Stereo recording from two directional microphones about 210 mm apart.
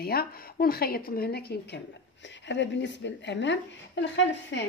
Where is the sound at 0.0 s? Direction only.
45° left (ahead or behind).